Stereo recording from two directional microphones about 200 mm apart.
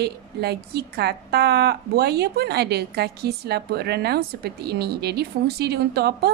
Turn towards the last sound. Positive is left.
turn(degrees=-55)  # may be behind; listen again after turning